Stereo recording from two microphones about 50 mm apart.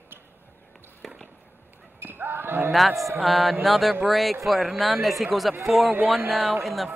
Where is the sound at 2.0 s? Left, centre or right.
Right.